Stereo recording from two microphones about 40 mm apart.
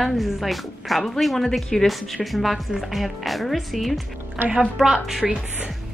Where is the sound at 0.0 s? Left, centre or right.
Centre.